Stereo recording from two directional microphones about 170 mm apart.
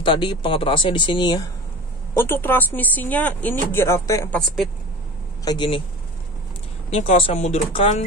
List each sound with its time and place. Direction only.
0.0 s speech: 25° left (ahead or behind)
2.1 s speech: 15° left (ahead or behind)
5.4 s speech: 25° left (ahead or behind)
6.9 s speech: 35° left (ahead or behind)